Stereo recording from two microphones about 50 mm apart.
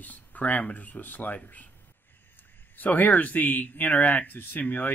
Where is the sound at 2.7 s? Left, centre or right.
Left.